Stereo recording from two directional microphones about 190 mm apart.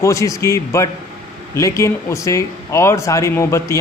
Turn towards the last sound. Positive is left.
turn(degrees=15)  # may be behind; listen again after turning